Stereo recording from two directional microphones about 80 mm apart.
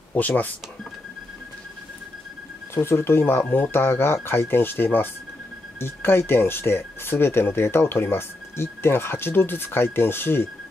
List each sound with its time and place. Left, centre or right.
0.1 s speech: left
2.7 s speech: left